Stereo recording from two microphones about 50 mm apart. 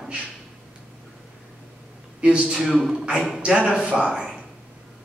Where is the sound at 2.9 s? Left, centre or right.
Centre.